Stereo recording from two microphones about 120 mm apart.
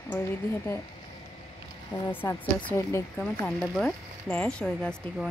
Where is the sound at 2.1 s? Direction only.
15° left (ahead or behind).